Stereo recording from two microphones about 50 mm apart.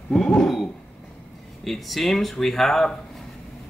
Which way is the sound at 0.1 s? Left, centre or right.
Centre.